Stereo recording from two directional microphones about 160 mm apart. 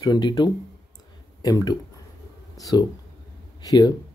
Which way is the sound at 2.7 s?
10° right (ahead or behind).